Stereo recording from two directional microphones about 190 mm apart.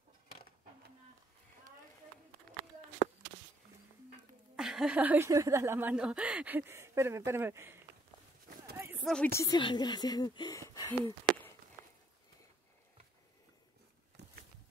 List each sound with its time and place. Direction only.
4.6 s speech: centre (ahead or behind)
9.0 s speech: 5° left (ahead or behind)